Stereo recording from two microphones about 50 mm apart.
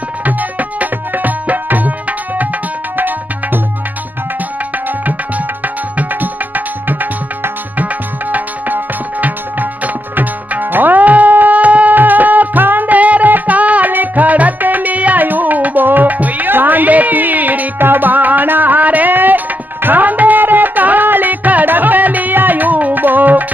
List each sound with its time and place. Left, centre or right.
0.2 s music: right
5.9 s music: right
10.1 s tabla: right